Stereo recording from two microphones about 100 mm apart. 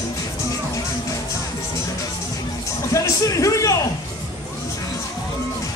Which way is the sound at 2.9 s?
35° left (ahead or behind).